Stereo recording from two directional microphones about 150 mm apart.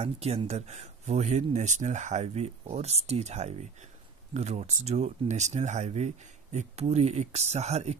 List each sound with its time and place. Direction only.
0.0 s speech: 45° right (ahead or behind)